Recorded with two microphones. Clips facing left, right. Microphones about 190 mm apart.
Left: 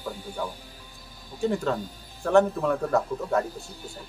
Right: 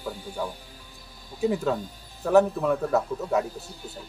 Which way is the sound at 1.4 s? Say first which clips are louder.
Right 1 dB; 5° right (ahead or behind).